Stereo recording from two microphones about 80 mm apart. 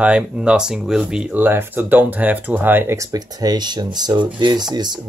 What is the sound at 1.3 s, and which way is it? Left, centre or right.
Speech, right.